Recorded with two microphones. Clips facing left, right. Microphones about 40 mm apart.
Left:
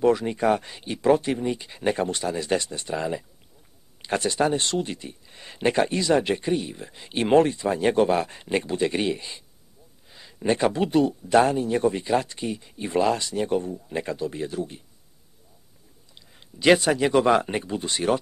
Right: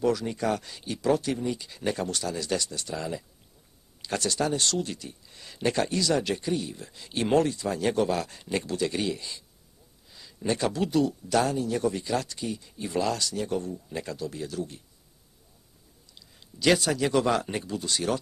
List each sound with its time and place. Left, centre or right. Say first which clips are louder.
0.0 s speech: left 5 dB; left
16.2 s speech: left 2 dB; left